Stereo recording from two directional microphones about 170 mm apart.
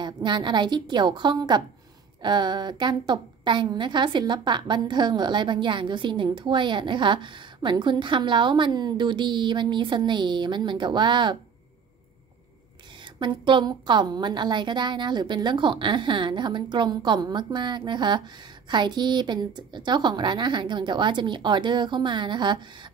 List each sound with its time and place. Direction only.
0.0 s a woman's voice: 25° right (ahead or behind)
13.0 s a woman's voice: 25° right (ahead or behind)